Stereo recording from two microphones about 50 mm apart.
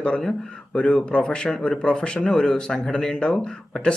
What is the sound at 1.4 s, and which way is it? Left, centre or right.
Speech, centre.